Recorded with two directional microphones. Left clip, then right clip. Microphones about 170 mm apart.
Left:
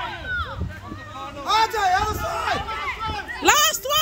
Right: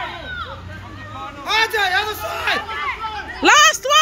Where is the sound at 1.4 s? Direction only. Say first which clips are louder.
Right 2 dB; 40° left (ahead or behind).